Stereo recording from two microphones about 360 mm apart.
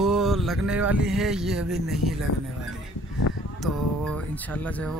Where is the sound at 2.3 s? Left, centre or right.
Left.